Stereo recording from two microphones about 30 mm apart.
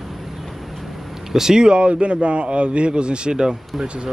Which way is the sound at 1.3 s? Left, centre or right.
Right.